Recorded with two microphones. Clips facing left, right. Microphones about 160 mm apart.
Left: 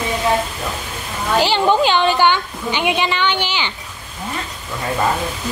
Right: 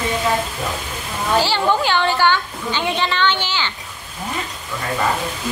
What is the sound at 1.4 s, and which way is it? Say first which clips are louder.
A woman's voice: left 4 dB; 15° left (ahead or behind).